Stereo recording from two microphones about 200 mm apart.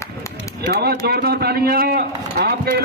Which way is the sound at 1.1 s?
50° right (ahead or behind).